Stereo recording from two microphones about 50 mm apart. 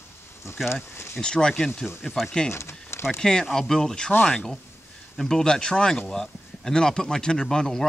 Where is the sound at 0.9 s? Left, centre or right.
Left.